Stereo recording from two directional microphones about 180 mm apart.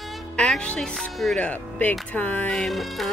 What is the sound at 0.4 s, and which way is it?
Speech, 5° left (ahead or behind).